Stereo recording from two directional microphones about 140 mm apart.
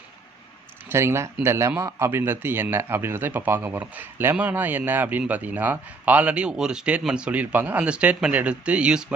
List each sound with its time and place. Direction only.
0.8 s a man's voice: 20° right (ahead or behind)